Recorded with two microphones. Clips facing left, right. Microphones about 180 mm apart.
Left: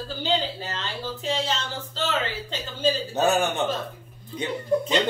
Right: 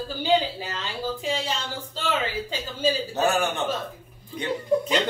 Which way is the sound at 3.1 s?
20° left (ahead or behind).